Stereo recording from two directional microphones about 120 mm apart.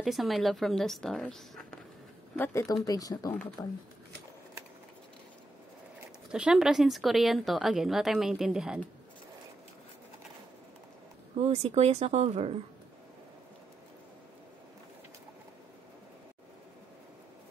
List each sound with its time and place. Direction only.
0.0 s a woman's voice: centre (ahead or behind)
2.3 s speech: 20° left (ahead or behind)
6.3 s a woman's voice: 5° right (ahead or behind)
11.3 s speech: 60° right (ahead or behind)